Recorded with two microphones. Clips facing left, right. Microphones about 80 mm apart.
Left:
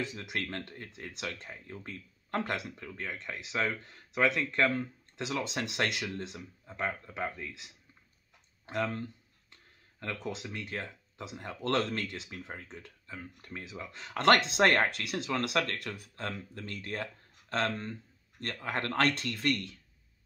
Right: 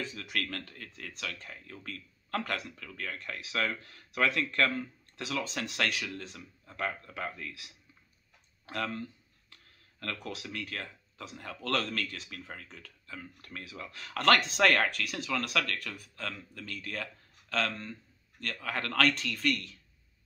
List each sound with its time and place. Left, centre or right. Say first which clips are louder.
0.1 s speech: even; left
6.6 s speech: even; centre
8.6 s speech: left 2 dB; left